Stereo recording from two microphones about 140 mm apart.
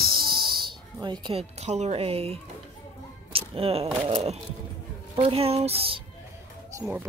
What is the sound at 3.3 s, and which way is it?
A woman's voice, 45° right (ahead or behind).